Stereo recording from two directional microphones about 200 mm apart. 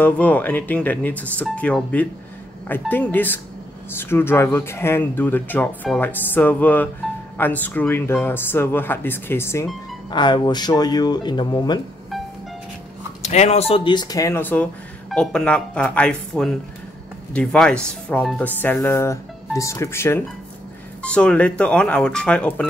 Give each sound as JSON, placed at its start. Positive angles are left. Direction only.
{"t": 0.0, "sound": "speech", "side_deg": 10}
{"t": 13.2, "sound": "speech", "side_deg": 35}